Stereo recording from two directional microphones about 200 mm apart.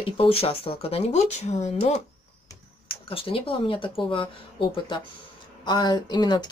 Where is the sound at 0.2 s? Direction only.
30° left (ahead or behind).